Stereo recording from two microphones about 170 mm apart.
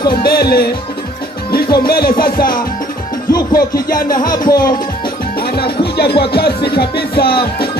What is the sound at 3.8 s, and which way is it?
Music, 60° left (ahead or behind).